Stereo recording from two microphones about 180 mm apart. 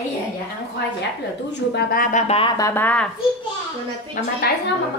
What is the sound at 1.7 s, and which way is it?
Speech, 55° left (ahead or behind).